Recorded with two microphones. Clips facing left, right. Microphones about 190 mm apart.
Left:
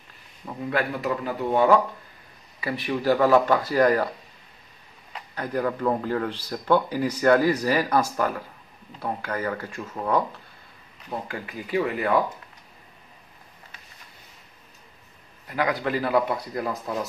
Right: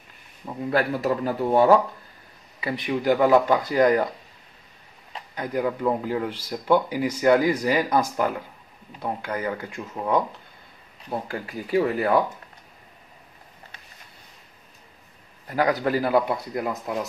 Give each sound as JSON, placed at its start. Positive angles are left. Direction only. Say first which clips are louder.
{"t": 0.7, "sound": "speech", "louder": "right 3 dB", "side_deg": -30}
{"t": 1.2, "sound": "speech", "louder": "right 2 dB", "side_deg": -40}
{"t": 2.6, "sound": "speech", "louder": "right 1 dB", "side_deg": -20}
{"t": 5.3, "sound": "speech", "louder": "right 1 dB", "side_deg": -15}
{"t": 9.0, "sound": "speech", "louder": "even", "side_deg": -20}
{"t": 11.1, "sound": "speech", "louder": "right 3 dB", "side_deg": -30}
{"t": 15.4, "sound": "a man's voice", "louder": "right 3 dB", "side_deg": -35}